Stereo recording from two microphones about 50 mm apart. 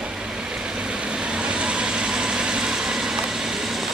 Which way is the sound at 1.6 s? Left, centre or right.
Centre.